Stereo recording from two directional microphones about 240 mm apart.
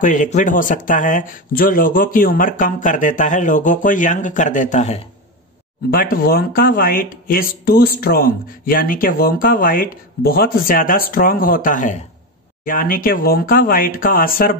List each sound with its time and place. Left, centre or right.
0.0 s speech: left